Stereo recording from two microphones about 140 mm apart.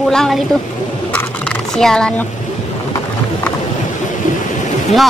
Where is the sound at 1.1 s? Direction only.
5° left (ahead or behind).